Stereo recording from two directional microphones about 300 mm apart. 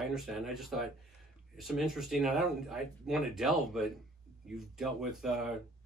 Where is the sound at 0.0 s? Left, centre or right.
Centre.